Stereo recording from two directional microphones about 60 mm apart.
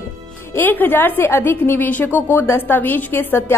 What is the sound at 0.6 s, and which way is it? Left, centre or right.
A woman's voice, left.